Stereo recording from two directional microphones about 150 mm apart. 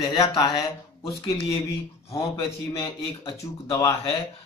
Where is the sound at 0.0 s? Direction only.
25° left (ahead or behind).